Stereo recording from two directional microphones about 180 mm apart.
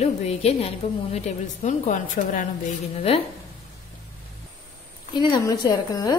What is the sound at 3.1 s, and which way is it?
Speech, 35° left (ahead or behind).